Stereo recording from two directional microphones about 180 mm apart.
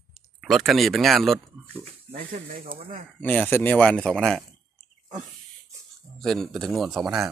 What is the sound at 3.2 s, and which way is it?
Speech, 10° left (ahead or behind).